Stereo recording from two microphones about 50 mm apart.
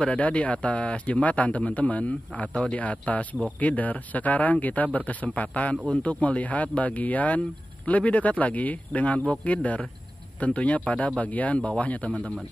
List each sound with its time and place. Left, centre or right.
0.0 s speech: left